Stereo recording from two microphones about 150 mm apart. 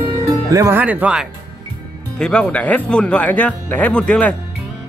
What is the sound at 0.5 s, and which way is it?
Speech, 20° right (ahead or behind).